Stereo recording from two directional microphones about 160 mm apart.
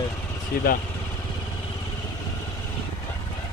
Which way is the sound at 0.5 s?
65° left (ahead or behind).